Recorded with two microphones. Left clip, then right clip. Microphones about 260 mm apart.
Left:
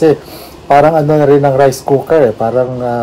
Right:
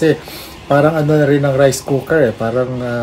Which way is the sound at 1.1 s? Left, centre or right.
Centre.